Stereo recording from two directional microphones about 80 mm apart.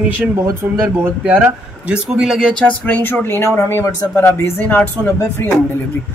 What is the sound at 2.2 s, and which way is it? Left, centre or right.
Speech, centre.